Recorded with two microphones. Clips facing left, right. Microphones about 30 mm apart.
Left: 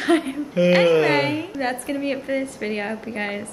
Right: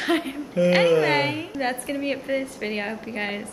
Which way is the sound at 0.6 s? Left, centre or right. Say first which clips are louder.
Left 2 dB; left.